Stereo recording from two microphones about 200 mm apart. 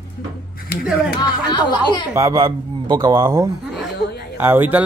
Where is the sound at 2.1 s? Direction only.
15° right (ahead or behind).